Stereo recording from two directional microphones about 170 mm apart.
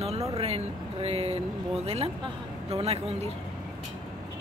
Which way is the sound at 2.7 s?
40° right (ahead or behind).